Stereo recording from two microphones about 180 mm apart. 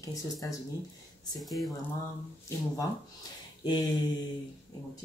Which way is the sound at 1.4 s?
Centre (ahead or behind).